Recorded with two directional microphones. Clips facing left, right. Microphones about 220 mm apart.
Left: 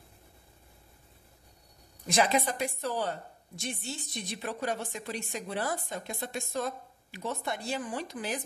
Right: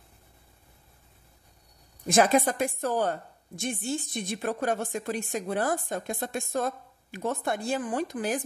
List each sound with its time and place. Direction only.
2.0 s a woman's voice: 50° right (ahead or behind)